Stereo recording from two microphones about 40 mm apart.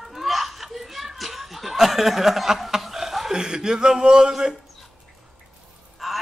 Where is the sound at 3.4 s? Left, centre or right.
Centre.